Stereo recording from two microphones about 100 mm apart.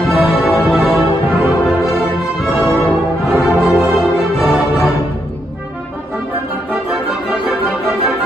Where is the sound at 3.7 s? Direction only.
Centre (ahead or behind).